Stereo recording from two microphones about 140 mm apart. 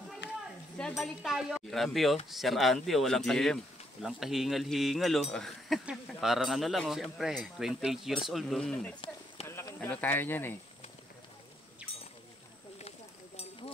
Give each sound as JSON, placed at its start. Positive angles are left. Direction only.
{"t": 0.7, "sound": "speech", "side_deg": 5}
{"t": 9.5, "sound": "speech", "side_deg": 20}